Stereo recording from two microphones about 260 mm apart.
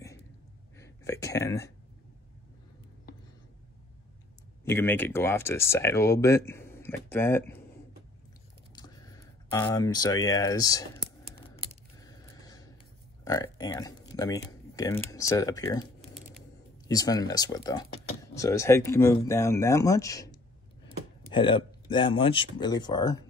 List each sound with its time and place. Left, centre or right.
0.7 s speech: centre
4.6 s speech: centre
8.7 s a sound: centre
13.2 s speech: centre
16.0 s a sound: centre
16.8 s speech: centre